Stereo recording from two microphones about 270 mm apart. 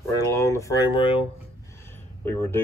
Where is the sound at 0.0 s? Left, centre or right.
Centre.